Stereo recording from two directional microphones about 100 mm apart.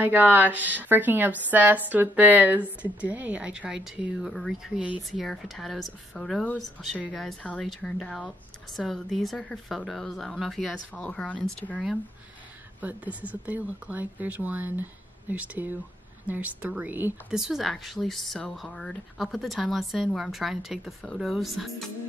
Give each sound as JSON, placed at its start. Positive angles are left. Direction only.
{"t": 0.0, "sound": "a woman's voice", "side_deg": -20}
{"t": 12.8, "sound": "a woman's voice", "side_deg": -15}
{"t": 17.3, "sound": "speech", "side_deg": -5}